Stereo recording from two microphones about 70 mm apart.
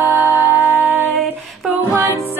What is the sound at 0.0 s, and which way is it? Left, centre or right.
Music, right.